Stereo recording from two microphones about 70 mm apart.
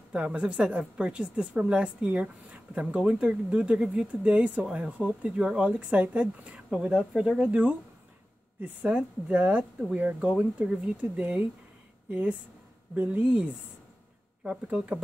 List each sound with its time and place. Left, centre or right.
0.1 s a woman's voice: centre